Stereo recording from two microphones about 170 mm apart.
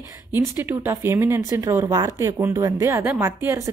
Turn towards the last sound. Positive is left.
turn(degrees=-15)  # may be behind; listen again after turning